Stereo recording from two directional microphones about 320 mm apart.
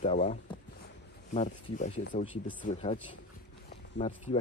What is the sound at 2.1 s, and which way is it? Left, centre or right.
Speech, left.